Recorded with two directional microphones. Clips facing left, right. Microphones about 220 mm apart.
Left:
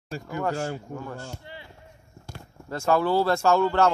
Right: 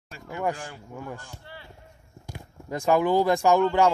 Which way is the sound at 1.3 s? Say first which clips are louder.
Left 3 dB; 15° left (ahead or behind).